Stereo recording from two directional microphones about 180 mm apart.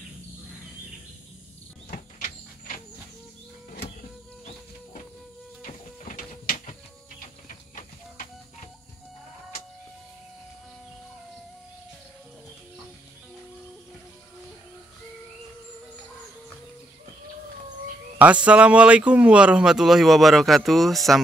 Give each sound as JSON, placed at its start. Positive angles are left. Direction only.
{"t": 1.9, "sound": "a sound", "side_deg": 45}
{"t": 5.7, "sound": "printer", "side_deg": 50}
{"t": 18.2, "sound": "speech", "side_deg": -5}